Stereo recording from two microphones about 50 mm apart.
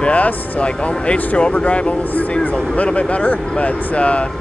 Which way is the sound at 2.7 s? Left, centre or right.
Left.